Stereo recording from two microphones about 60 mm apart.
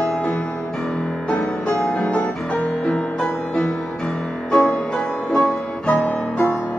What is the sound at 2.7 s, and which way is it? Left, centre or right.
Music, centre.